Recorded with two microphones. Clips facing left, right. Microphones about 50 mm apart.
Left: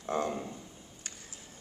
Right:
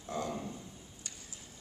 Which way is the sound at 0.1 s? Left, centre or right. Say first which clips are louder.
Left 5 dB; left.